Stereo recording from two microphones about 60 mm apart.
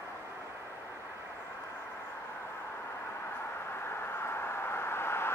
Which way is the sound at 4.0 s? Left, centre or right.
Left.